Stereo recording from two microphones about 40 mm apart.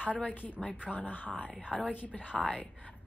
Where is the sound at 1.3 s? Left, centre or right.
Right.